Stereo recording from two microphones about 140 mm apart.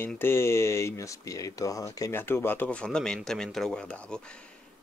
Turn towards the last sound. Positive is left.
turn(degrees=5)  # may be behind; listen again after turning